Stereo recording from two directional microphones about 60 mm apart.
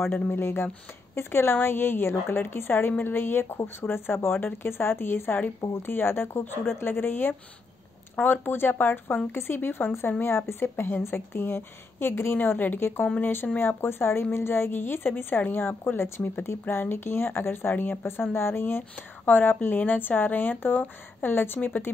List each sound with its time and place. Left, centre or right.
0.3 s a woman's voice: left